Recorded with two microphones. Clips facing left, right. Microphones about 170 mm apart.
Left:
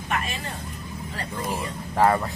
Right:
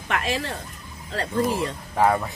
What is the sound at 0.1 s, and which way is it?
Speech, 90° right.